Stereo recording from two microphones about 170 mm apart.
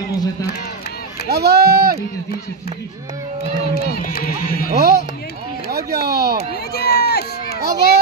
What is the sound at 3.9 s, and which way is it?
Speech, 60° left (ahead or behind).